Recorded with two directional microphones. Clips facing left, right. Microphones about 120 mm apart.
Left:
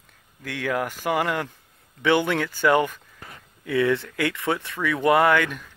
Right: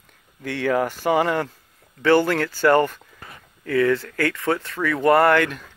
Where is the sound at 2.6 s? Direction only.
10° left (ahead or behind).